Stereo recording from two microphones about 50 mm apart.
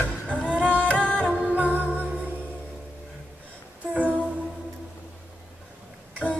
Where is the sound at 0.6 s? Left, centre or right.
Left.